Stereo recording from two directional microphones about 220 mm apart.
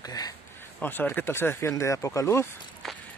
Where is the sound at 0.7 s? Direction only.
10° left (ahead or behind).